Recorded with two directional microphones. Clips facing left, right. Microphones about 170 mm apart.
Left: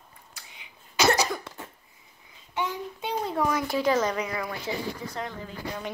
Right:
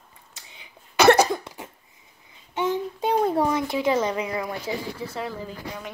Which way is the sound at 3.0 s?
50° right (ahead or behind).